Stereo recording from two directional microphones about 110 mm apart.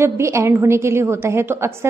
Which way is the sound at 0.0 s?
25° right (ahead or behind).